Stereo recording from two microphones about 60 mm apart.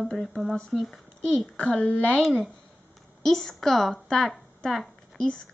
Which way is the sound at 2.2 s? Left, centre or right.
Centre.